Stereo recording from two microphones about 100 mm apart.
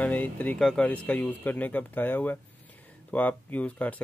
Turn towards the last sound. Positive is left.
turn(degrees=15)  # may be behind; listen again after turning